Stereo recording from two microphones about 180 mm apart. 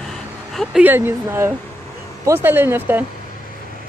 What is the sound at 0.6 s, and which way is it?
Speech, 5° right (ahead or behind).